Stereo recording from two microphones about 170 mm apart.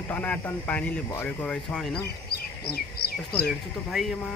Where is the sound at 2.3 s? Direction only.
65° left (ahead or behind).